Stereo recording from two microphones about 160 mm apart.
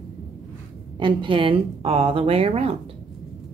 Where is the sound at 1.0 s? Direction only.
30° right (ahead or behind).